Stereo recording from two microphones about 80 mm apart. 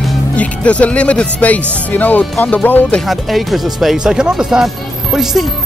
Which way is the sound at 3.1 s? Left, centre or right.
Centre.